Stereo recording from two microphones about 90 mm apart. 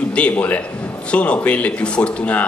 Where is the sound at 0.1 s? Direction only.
15° left (ahead or behind).